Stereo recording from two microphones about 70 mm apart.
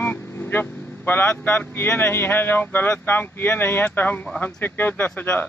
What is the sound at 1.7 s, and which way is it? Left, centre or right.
Speech, left.